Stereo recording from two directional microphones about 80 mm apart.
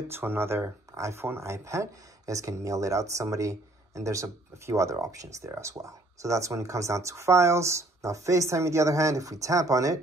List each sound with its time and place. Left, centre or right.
0.1 s speech: right